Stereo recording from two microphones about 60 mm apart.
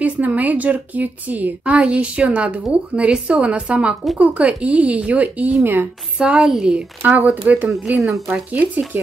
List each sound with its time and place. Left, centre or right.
0.0 s a woman's voice: right
7.1 s a woman's voice: right
7.7 s speech: centre
8.5 s a woman's voice: right